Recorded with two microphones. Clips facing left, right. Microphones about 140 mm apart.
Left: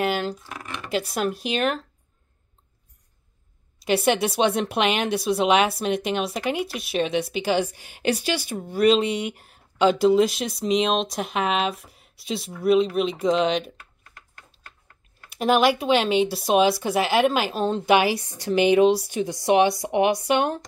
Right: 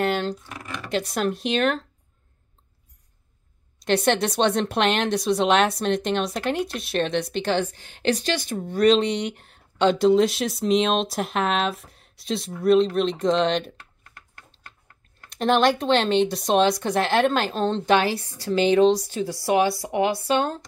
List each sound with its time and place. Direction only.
0.0 s speech: 5° left (ahead or behind)
3.8 s speech: 5° left (ahead or behind)
15.2 s speech: 5° left (ahead or behind)